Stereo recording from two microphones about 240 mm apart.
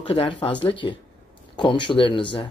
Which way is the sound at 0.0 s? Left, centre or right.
Left.